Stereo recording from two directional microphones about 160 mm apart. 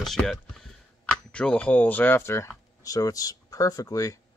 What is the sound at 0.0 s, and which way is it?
Speech, centre (ahead or behind).